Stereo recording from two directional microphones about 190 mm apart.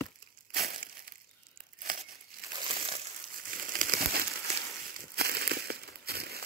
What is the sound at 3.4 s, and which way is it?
Crumpling, 45° right (ahead or behind).